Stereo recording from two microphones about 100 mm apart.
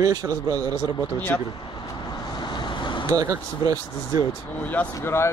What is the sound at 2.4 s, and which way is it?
Vehicle, 50° left (ahead or behind).